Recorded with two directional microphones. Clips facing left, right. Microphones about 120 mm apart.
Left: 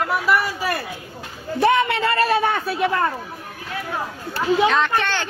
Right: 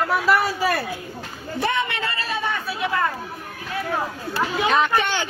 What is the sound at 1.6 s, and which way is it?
Speech, 55° left (ahead or behind).